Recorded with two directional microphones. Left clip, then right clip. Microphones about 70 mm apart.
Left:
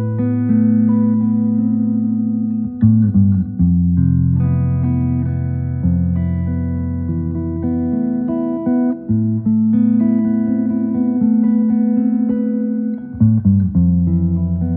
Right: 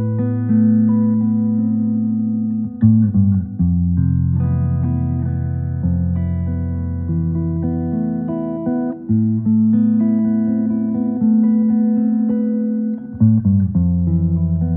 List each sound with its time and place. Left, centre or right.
0.2 s music: left
8.6 s music: left